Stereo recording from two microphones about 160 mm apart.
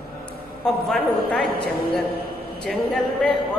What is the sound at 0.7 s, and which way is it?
Speech, 5° left (ahead or behind).